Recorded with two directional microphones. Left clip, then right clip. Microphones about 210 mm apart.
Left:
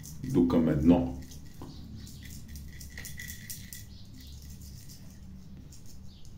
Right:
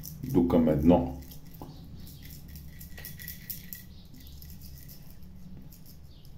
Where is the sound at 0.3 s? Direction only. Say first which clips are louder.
Right 2 dB; 15° right (ahead or behind).